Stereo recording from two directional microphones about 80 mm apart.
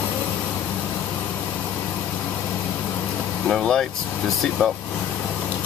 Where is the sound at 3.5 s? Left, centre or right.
Centre.